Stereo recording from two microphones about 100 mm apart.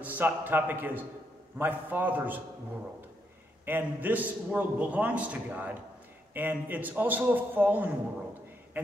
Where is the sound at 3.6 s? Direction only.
20° right (ahead or behind).